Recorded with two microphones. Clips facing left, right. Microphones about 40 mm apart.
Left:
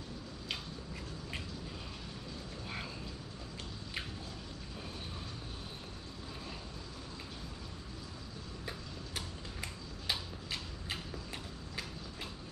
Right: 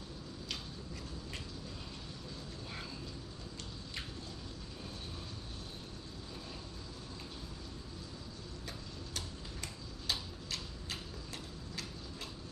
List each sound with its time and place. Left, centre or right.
8.6 s tick-tock: centre